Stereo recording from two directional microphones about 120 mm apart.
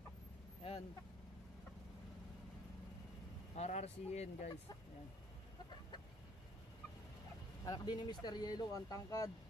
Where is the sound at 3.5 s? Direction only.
65° left (ahead or behind).